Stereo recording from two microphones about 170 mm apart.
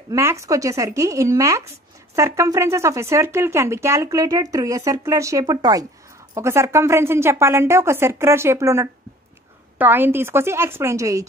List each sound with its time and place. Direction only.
0.1 s speech: 15° right (ahead or behind)